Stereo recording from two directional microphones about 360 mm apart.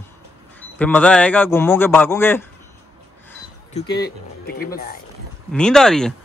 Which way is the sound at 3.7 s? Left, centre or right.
Centre.